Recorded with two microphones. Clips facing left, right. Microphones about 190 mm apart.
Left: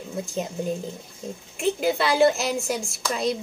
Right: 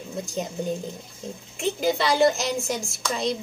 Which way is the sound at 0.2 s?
5° left (ahead or behind).